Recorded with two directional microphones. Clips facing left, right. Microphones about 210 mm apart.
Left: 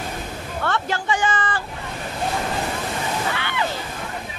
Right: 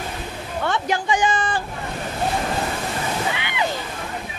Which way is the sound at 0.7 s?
15° right (ahead or behind).